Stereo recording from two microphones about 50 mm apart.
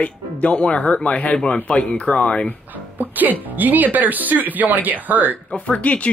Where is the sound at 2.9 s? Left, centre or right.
Right.